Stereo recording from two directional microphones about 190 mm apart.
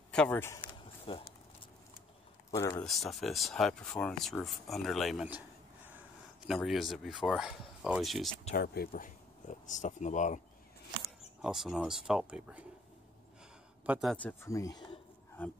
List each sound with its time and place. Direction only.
0.1 s speech: 5° left (ahead or behind)
1.0 s speech: 25° left (ahead or behind)
2.5 s speech: 15° left (ahead or behind)
2.8 s speech: centre (ahead or behind)
8.5 s speech: 50° left (ahead or behind)
11.4 s speech: centre (ahead or behind)
13.8 s speech: centre (ahead or behind); by 15.0 s 20° left (ahead or behind)